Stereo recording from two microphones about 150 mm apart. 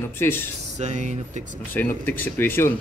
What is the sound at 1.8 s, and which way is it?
Speech, 15° left (ahead or behind).